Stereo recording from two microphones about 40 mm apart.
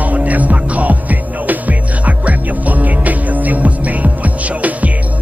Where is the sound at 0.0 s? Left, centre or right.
Right.